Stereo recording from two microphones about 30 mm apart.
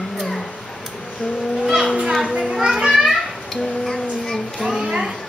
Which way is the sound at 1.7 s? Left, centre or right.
Centre.